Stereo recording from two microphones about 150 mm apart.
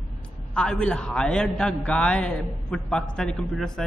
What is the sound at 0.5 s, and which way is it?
A man's voice, 5° left (ahead or behind).